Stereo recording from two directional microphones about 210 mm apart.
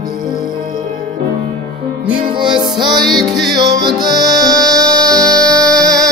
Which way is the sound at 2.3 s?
20° right (ahead or behind).